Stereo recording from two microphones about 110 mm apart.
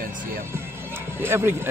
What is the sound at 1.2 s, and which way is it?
Speech, 20° right (ahead or behind).